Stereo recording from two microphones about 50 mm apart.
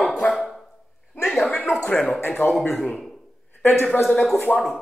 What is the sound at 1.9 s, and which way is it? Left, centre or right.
Speech, left.